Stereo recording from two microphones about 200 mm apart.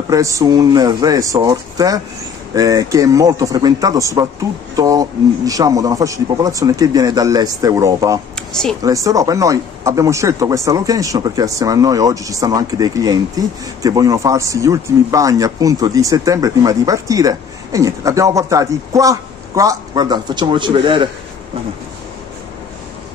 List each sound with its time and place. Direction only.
0.1 s speech: 15° right (ahead or behind)
8.4 s speech: 5° left (ahead or behind)
8.8 s speech: 15° right (ahead or behind)